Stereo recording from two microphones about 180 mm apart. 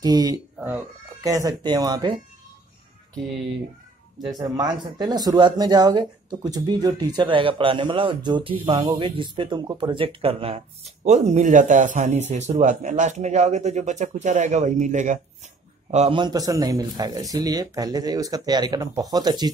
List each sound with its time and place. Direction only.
0.0 s speech: 20° right (ahead or behind)
0.6 s speech: 10° right (ahead or behind)
4.2 s speech: 20° right (ahead or behind); by 15.1 s 45° right (ahead or behind)
15.9 s speech: 35° right (ahead or behind)